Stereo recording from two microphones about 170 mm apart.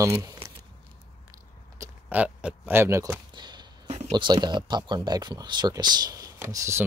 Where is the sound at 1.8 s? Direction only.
10° right (ahead or behind); by 3.6 s 25° right (ahead or behind).